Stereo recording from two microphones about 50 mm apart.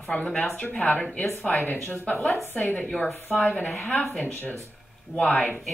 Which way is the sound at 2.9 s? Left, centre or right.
Centre.